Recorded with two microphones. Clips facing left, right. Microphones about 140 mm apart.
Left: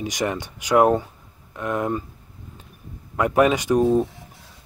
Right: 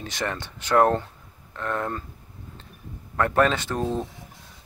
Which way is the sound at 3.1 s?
10° left (ahead or behind).